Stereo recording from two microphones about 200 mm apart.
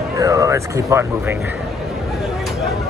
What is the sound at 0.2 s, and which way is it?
Speech, 15° right (ahead or behind).